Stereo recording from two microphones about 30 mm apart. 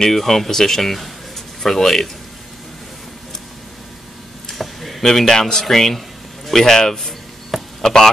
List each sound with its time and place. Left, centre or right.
0.1 s speech: centre
4.6 s a sound: centre
5.0 s a man's voice: centre